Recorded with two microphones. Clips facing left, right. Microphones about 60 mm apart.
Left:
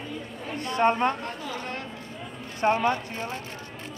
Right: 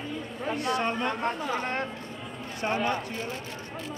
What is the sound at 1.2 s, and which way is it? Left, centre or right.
Speech, right.